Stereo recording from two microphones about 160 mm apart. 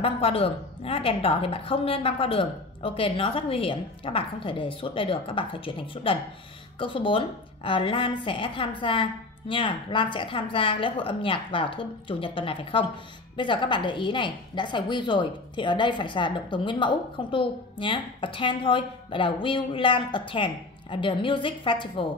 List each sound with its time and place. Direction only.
0.0 s a woman's voice: 35° left (ahead or behind)